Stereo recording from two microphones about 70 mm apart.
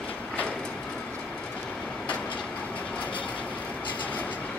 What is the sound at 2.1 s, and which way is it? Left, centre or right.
Vehicle, left.